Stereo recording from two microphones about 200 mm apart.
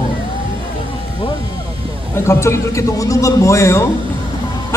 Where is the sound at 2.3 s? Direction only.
15° left (ahead or behind).